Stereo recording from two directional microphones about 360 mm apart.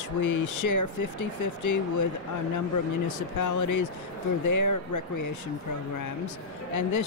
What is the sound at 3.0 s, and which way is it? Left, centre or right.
Speech, left.